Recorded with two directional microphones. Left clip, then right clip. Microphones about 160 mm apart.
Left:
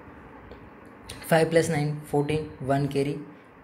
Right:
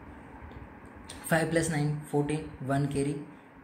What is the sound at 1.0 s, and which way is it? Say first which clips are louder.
A woman's voice: left 6 dB; 20° left (ahead or behind).